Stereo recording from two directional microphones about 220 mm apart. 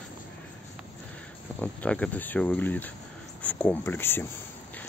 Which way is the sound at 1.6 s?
5° left (ahead or behind).